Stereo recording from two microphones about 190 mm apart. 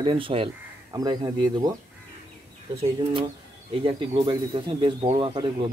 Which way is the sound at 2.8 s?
25° right (ahead or behind).